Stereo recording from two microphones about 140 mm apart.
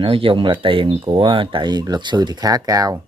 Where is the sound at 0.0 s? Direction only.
40° right (ahead or behind).